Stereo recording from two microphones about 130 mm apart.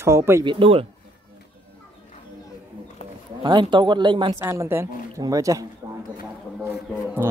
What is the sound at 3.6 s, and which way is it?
Speech, 35° right (ahead or behind).